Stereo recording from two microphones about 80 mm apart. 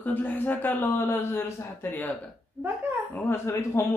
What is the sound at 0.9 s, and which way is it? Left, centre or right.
A man's voice, left.